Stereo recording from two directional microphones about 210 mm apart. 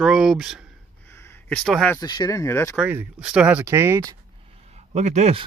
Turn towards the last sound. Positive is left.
turn(degrees=-30)  # may be behind; listen again after turning